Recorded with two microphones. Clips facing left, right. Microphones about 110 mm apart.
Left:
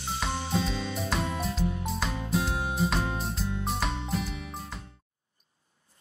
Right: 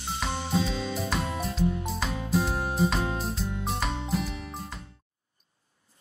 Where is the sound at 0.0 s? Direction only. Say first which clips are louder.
Even; centre (ahead or behind).